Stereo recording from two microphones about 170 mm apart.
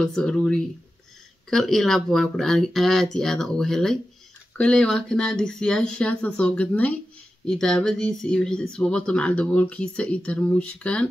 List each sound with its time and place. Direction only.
0.0 s speech: 5° left (ahead or behind)